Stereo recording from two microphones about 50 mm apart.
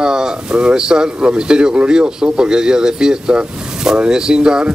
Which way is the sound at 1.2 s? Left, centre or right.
Centre.